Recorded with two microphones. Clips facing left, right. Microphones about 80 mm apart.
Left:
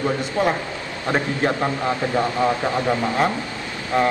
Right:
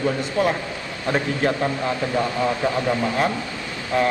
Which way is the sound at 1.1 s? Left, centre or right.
Left.